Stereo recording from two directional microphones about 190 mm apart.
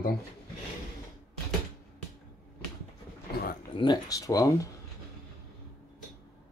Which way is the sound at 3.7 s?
25° left (ahead or behind).